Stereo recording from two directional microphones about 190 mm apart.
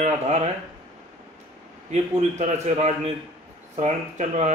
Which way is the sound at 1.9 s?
40° right (ahead or behind).